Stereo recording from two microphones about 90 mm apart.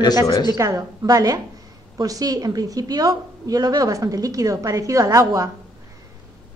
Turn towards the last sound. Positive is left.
turn(degrees=-40)  # may be behind; listen again after turning